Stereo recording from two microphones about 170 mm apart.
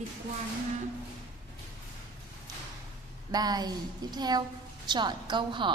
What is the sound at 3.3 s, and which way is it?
A woman's voice, 25° right (ahead or behind).